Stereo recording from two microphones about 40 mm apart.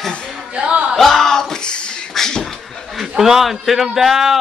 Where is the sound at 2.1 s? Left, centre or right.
Centre.